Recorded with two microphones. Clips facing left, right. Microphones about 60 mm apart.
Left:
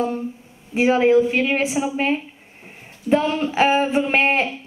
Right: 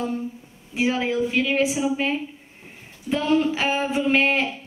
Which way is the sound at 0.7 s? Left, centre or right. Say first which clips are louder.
Left 8 dB; left.